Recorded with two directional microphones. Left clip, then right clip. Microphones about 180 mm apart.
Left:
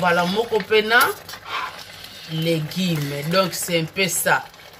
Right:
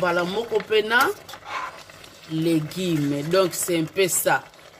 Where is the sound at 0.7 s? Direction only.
50° right (ahead or behind).